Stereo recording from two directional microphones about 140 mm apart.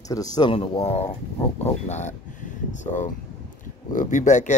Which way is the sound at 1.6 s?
55° left (ahead or behind).